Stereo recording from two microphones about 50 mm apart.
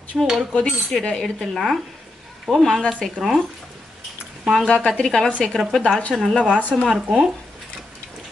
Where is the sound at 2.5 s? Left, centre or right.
Centre.